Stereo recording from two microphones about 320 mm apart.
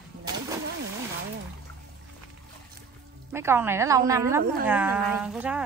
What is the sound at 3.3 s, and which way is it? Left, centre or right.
Speech, centre.